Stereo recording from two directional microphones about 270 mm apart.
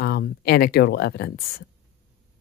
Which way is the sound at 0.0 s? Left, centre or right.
Left.